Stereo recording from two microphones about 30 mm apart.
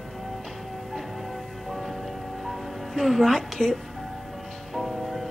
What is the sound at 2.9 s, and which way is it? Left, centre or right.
Speech, centre.